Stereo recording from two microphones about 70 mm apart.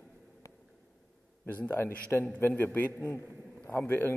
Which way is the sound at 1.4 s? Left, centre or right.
Left.